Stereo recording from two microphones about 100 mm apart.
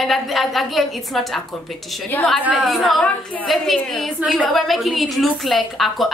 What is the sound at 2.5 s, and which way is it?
A woman's voice, centre (ahead or behind).